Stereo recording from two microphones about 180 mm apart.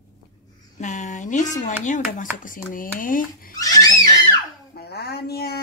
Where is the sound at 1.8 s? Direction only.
45° left (ahead or behind).